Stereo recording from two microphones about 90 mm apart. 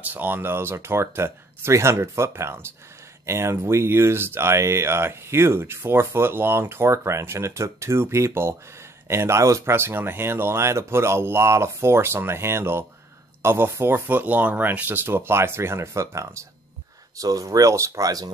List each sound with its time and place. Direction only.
0.0 s speech: 20° right (ahead or behind); by 18.3 s 45° right (ahead or behind)